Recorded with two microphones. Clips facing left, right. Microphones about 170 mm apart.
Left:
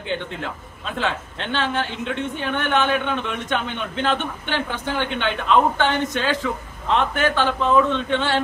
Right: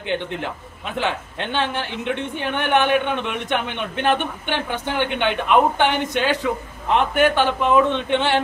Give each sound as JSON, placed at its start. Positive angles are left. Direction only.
{"t": 0.9, "sound": "a woman's voice", "side_deg": -15}